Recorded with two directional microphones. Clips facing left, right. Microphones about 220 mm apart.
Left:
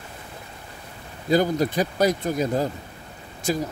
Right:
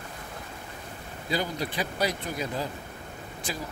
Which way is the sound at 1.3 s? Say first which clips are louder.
Left 10 dB; 45° left (ahead or behind).